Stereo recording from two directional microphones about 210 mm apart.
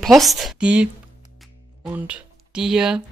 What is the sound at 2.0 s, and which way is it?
Speech, 5° right (ahead or behind).